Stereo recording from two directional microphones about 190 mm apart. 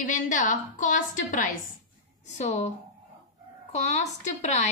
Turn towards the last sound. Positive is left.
turn(degrees=40)  # may be behind; listen again after turning